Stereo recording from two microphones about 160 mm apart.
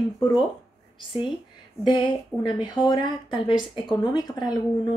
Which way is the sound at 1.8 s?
30° left (ahead or behind).